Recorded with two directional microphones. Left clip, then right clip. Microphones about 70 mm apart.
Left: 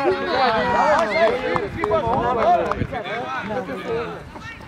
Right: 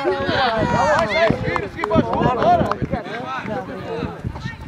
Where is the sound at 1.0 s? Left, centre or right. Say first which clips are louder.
Even; right.